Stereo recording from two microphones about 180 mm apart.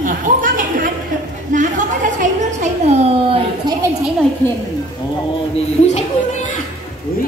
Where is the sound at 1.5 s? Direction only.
45° right (ahead or behind).